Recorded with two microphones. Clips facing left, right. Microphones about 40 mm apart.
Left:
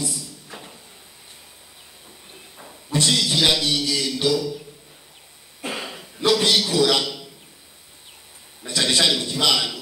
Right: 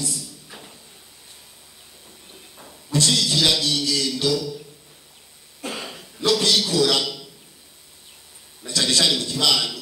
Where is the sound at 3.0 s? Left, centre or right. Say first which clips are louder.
Left 1 dB; left.